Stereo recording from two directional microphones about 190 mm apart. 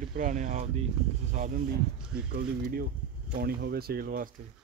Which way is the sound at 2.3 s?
50° right (ahead or behind).